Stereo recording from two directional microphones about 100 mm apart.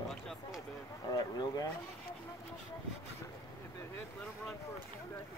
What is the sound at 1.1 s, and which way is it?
Speech, 40° left (ahead or behind).